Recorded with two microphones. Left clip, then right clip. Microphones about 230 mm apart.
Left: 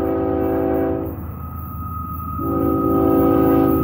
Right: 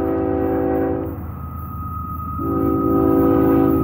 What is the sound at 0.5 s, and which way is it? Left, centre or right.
Train, left.